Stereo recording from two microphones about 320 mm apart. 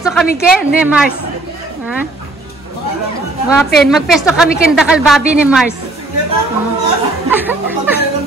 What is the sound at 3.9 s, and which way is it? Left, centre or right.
A woman's voice, centre.